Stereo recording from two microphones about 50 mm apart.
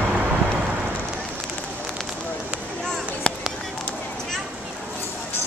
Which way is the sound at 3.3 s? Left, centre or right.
Left.